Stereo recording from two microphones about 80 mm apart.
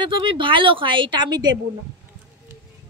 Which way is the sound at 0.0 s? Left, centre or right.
Right.